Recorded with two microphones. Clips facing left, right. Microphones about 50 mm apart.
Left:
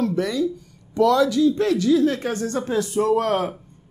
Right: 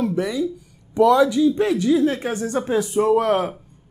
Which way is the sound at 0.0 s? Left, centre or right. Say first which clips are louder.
Even; centre.